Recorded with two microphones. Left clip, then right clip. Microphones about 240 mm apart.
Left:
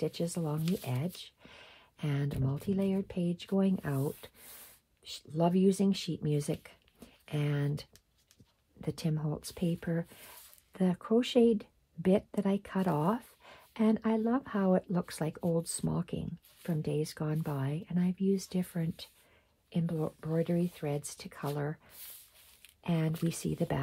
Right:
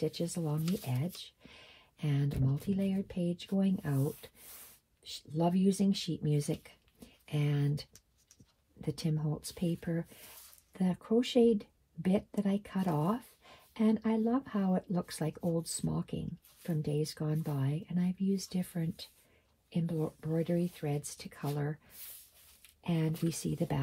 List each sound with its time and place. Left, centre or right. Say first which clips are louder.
0.0 s speech: left 1 dB; left
5.3 s speech: left 3 dB; left
8.8 s speech: left 1 dB; left
22.8 s speech: left 1 dB; left